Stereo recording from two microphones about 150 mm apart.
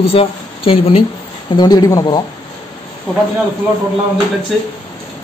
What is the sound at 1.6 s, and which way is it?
Speech, 25° left (ahead or behind).